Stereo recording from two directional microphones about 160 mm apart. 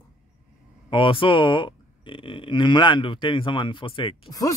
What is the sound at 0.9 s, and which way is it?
Speech, 30° left (ahead or behind).